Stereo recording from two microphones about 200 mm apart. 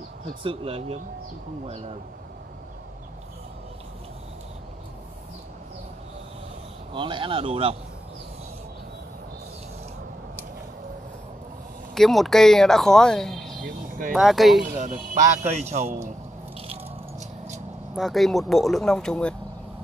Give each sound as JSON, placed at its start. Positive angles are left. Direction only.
{"t": 0.4, "sound": "speech", "side_deg": -25}
{"t": 6.9, "sound": "speech", "side_deg": -25}
{"t": 11.9, "sound": "speech", "side_deg": 0}
{"t": 13.7, "sound": "speech", "side_deg": -45}
{"t": 14.1, "sound": "speech", "side_deg": 0}
{"t": 14.6, "sound": "speech", "side_deg": -40}
{"t": 17.9, "sound": "speech", "side_deg": 0}